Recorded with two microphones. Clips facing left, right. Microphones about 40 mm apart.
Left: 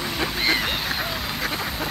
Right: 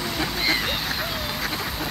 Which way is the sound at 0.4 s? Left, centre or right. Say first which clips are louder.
Left 2 dB; left.